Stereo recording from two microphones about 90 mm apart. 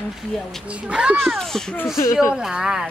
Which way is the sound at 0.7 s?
10° right (ahead or behind).